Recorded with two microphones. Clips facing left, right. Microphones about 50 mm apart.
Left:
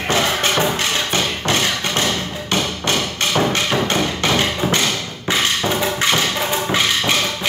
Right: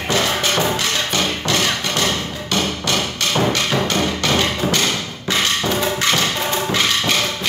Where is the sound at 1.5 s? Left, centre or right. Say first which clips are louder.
Left 2 dB; left.